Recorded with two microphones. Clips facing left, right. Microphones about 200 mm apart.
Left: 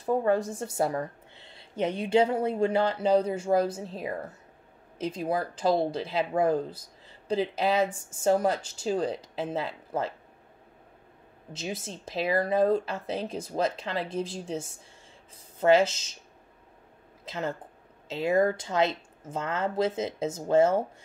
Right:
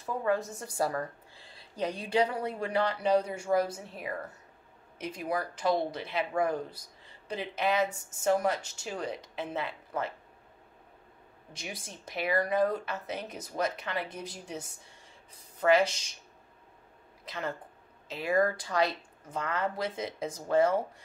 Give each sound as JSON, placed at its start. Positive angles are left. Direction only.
{"t": 0.0, "sound": "a woman's voice", "side_deg": 35}
{"t": 11.5, "sound": "a woman's voice", "side_deg": 25}
{"t": 17.2, "sound": "a woman's voice", "side_deg": 25}